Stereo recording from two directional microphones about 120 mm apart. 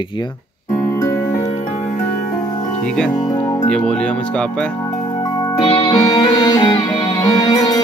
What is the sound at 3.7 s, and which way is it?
Speech, 5° left (ahead or behind).